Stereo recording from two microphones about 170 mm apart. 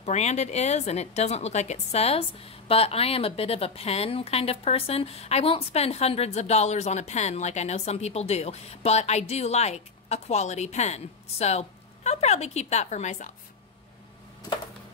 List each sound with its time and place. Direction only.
0.0 s a woman's voice: 40° left (ahead or behind)